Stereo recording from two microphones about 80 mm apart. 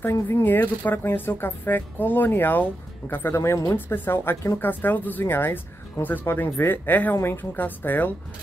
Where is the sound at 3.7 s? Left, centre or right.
Left.